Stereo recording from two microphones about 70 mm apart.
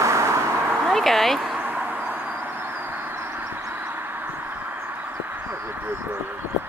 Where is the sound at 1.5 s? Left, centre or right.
Right.